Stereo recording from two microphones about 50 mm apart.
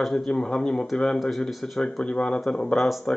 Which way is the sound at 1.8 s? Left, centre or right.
Centre.